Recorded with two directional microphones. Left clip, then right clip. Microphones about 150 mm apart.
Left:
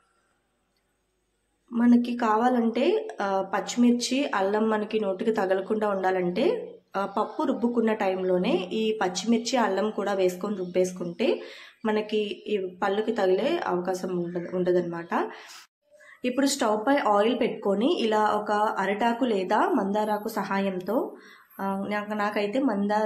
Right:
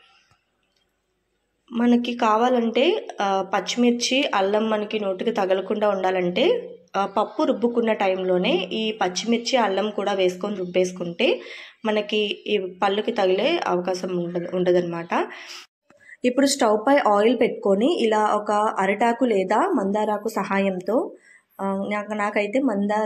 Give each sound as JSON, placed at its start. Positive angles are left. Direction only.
{"t": 1.7, "sound": "a woman's voice", "side_deg": -10}
{"t": 16.1, "sound": "a woman's voice", "side_deg": -30}